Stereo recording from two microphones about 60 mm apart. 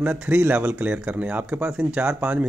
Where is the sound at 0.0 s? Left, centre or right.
Right.